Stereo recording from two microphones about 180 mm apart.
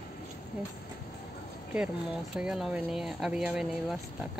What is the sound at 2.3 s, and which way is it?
Speech, 5° right (ahead or behind).